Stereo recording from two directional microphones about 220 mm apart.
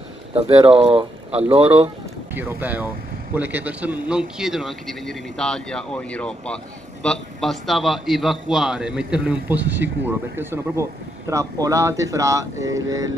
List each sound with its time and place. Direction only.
0.7 s speech: 25° right (ahead or behind)
2.3 s speech: 10° right (ahead or behind)